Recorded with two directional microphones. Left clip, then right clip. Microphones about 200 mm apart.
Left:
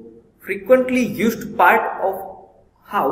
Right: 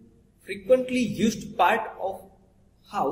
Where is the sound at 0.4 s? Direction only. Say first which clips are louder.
Left 7 dB; 15° right (ahead or behind).